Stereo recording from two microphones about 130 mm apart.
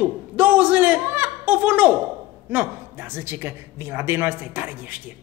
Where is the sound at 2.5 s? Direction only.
15° right (ahead or behind).